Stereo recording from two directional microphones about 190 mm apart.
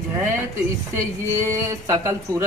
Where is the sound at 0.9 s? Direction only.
15° right (ahead or behind).